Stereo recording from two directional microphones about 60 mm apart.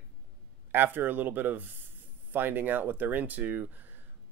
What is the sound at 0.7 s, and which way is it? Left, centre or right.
Speech, right.